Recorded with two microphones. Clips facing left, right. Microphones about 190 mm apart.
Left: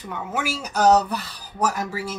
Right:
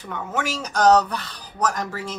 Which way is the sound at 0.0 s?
10° left (ahead or behind).